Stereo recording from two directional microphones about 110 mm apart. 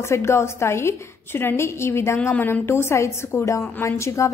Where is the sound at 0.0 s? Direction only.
25° left (ahead or behind).